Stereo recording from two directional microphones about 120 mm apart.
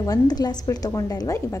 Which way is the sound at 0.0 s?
30° left (ahead or behind).